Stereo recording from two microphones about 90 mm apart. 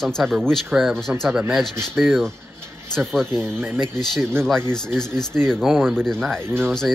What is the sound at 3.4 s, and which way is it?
Speech, 25° right (ahead or behind).